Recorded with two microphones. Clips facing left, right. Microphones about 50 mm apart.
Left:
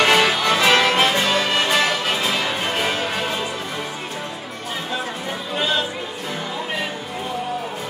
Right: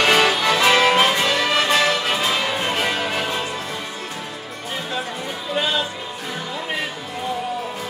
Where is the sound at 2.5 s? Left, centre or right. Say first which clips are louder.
Even; centre.